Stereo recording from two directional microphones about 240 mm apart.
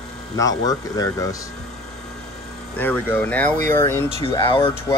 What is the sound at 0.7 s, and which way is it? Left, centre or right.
Speech, centre.